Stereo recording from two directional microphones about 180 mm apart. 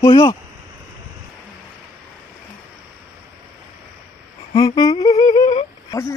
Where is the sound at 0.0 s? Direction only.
25° left (ahead or behind).